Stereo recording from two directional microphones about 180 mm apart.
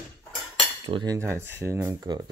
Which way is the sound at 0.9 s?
25° right (ahead or behind).